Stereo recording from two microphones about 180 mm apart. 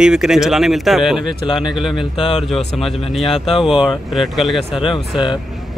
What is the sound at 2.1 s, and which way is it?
Speech, 30° left (ahead or behind).